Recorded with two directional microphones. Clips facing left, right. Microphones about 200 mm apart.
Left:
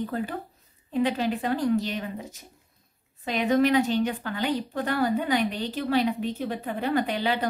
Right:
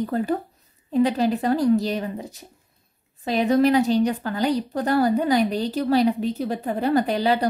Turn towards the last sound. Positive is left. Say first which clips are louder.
# right 5 dB
turn(degrees=-40)  # may be behind; listen again after turning